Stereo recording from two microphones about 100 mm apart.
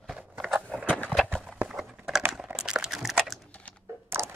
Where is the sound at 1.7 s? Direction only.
5° right (ahead or behind).